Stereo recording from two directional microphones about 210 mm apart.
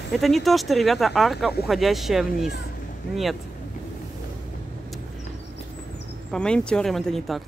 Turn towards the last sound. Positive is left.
turn(degrees=0)  # may be behind; listen again after turning